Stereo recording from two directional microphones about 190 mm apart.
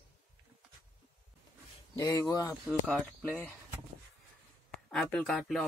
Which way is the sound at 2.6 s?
Centre (ahead or behind).